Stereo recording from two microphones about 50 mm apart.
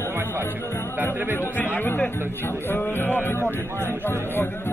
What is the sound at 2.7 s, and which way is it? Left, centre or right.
Speech, left.